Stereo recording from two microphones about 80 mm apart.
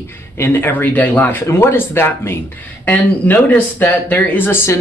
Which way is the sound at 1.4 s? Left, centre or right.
Left.